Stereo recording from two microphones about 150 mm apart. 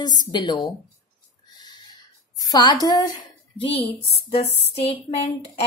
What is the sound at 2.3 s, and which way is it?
Speech, 25° left (ahead or behind).